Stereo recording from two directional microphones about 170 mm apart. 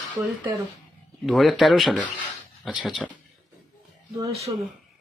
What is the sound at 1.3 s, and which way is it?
Speech, centre (ahead or behind).